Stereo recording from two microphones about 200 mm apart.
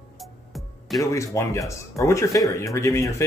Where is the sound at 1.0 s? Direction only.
15° left (ahead or behind).